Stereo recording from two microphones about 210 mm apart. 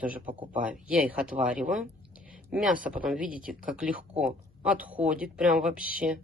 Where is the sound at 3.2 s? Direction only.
40° right (ahead or behind).